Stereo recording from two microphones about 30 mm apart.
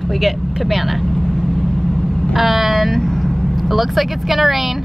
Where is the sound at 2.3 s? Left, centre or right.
Centre.